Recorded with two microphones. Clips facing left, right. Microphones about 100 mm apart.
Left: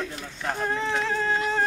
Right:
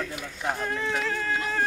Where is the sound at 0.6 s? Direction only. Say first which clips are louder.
Left 5 dB; 25° left (ahead or behind).